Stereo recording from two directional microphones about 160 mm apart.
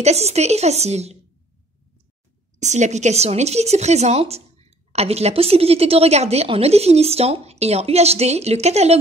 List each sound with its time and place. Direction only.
0.0 s a woman's voice: 40° right (ahead or behind)
2.6 s speech: 45° right (ahead or behind)